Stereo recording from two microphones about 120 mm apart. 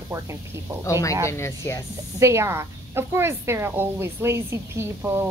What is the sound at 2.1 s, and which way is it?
Speech, 25° right (ahead or behind).